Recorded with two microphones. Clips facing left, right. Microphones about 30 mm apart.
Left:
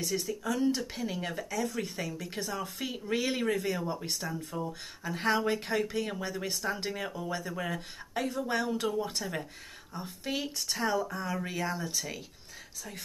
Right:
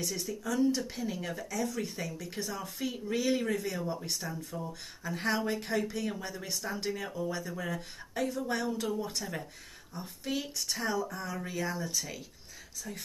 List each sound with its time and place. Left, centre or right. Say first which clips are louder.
0.0 s speech: left 3 dB; centre
5.0 s speech: left 3 dB; centre